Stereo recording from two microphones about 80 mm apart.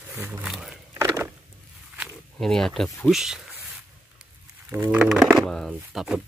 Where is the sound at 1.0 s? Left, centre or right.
Right.